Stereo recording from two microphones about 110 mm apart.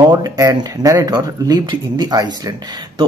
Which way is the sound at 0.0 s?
35° right (ahead or behind).